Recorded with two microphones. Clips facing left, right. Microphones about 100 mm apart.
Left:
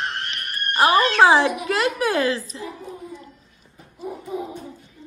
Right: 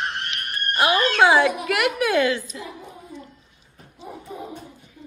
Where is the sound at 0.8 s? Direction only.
35° left (ahead or behind).